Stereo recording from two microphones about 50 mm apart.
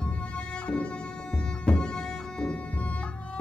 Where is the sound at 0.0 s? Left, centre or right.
Left.